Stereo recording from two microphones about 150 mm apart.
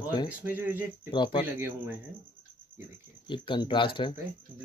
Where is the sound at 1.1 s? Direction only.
30° left (ahead or behind).